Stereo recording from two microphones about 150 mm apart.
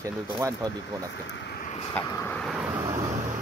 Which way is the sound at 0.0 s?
20° right (ahead or behind).